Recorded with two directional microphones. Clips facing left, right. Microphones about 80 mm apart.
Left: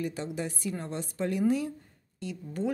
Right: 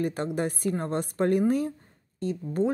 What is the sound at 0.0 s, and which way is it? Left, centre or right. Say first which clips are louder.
Speech: right 6 dB; right.